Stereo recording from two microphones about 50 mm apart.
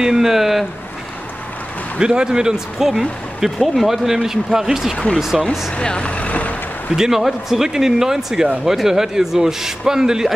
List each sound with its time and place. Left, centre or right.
0.0 s a man's voice: centre
2.0 s a man's voice: centre
4.9 s speech: left
7.0 s a man's voice: centre